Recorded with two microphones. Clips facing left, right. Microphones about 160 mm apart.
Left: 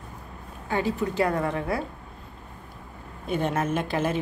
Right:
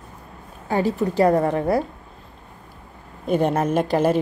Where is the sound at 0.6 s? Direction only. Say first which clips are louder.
Right 5 dB; 35° right (ahead or behind).